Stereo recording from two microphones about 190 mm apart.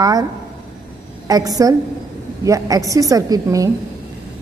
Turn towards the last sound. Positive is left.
turn(degrees=-20)  # may be behind; listen again after turning